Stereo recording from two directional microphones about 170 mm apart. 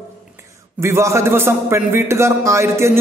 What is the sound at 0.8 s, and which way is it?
A man's voice, 15° right (ahead or behind).